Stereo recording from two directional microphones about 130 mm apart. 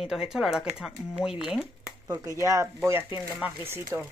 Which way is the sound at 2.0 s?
25° right (ahead or behind).